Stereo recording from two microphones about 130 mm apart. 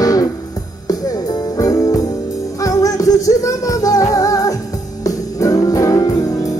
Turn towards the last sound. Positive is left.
turn(degrees=25)  # may be behind; listen again after turning